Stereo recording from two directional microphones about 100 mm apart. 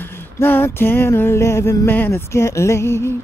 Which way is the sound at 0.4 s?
25° left (ahead or behind).